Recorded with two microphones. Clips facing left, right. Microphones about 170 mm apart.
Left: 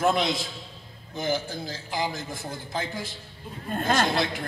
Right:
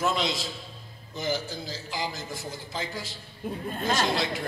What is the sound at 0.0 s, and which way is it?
A man's voice, 55° left (ahead or behind).